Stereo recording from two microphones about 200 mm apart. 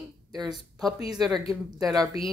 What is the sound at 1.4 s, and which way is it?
Speech, centre (ahead or behind).